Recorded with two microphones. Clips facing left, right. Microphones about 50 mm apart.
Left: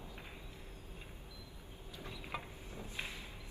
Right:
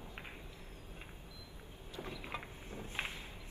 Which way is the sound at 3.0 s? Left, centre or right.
Right.